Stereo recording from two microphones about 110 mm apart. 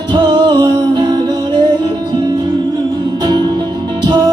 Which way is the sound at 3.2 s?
40° right (ahead or behind).